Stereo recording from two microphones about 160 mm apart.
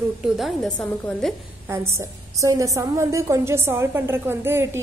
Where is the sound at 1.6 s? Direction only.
15° right (ahead or behind).